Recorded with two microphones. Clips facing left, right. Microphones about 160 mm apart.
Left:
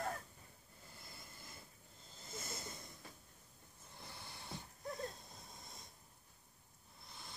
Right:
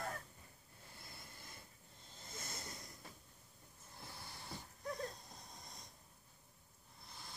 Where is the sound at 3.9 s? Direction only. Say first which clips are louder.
Even; centre (ahead or behind).